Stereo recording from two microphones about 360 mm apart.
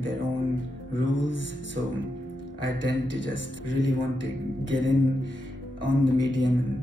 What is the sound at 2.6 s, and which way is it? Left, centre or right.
Speech, left.